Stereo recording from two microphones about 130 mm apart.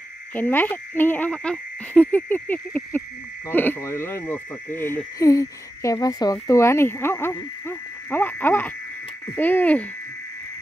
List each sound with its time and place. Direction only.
0.3 s speech: 15° left (ahead or behind)
7.6 s frog: 15° left (ahead or behind)
9.3 s speech: 15° left (ahead or behind)